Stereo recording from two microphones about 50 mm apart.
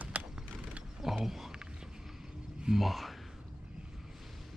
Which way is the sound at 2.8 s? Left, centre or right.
Centre.